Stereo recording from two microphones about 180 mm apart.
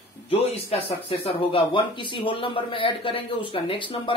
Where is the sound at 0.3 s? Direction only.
30° left (ahead or behind).